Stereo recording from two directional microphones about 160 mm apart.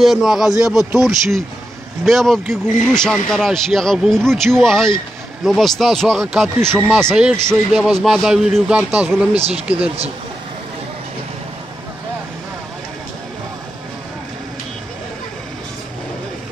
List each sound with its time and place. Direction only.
0.0 s speech: centre (ahead or behind)
6.6 s speech: 15° right (ahead or behind)
7.0 s speech: 5° left (ahead or behind)
7.2 s speech: 15° right (ahead or behind)
7.7 s speech: centre (ahead or behind)
9.3 s speech: 40° right (ahead or behind)